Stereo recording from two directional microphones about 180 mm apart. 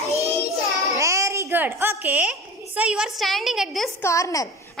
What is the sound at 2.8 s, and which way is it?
A woman's voice, 5° right (ahead or behind).